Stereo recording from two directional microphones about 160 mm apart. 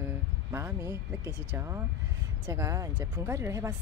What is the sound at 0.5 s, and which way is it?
Speech, 15° right (ahead or behind).